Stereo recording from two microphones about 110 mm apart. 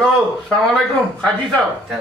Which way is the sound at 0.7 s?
10° left (ahead or behind).